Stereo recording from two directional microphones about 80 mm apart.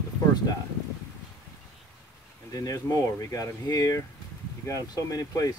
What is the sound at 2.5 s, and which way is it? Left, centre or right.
Speech, left.